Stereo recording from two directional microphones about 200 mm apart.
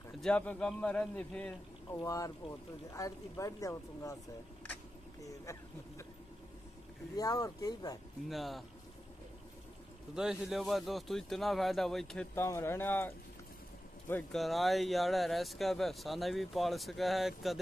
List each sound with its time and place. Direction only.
0.2 s speech: 5° left (ahead or behind)
1.9 s speech: 15° left (ahead or behind)
5.2 s speech: 15° left (ahead or behind)
7.2 s speech: 20° left (ahead or behind)
8.3 s speech: centre (ahead or behind)
10.1 s speech: 5° right (ahead or behind)